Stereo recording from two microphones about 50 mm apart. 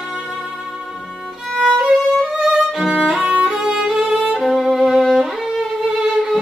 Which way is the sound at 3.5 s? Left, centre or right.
Centre.